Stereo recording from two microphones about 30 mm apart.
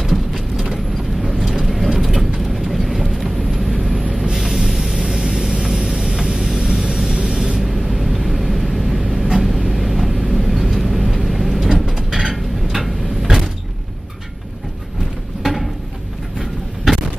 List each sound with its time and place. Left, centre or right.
0.0 s a sound: centre
2.0 s bird: centre
2.5 s vehicle: centre
5.0 s vehicle: right
7.8 s vehicle: centre
12.1 s a sound: centre
12.7 s vehicle: centre
15.4 s a sound: centre
16.3 s vehicle: centre